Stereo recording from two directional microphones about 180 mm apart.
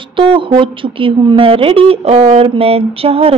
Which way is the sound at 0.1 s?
30° right (ahead or behind).